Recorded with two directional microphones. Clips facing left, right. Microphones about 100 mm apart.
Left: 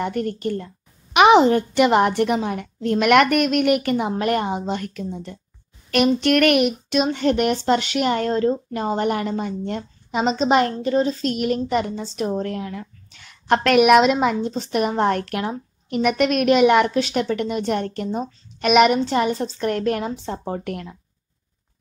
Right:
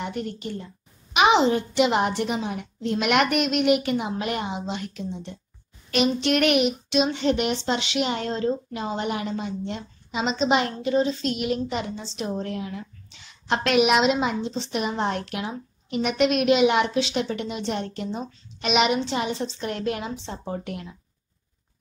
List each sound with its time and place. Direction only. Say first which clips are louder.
0.0 s a woman's voice: left 7 dB; 50° left (ahead or behind)